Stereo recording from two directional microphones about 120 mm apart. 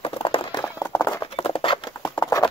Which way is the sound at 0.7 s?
25° left (ahead or behind).